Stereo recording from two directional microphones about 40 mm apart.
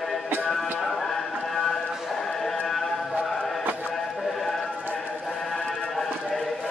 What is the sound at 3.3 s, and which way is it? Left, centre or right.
Music, centre.